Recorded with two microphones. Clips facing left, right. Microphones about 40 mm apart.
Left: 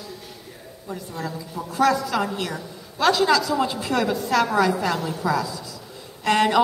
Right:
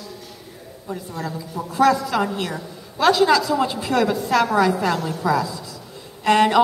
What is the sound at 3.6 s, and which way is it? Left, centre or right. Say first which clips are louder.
A woman's voice: right 3 dB; centre.